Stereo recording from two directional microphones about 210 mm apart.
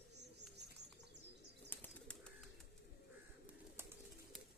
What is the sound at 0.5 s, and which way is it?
Bird, 55° right (ahead or behind).